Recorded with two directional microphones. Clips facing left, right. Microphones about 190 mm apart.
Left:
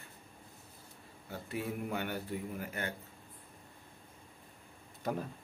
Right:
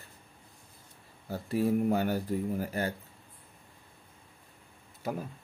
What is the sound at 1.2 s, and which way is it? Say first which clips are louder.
Speech: right 10 dB; 35° right (ahead or behind).